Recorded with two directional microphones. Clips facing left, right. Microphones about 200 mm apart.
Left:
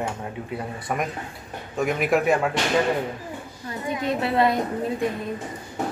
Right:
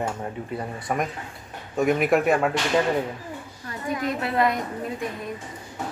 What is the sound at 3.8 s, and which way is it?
Speech, 25° left (ahead or behind).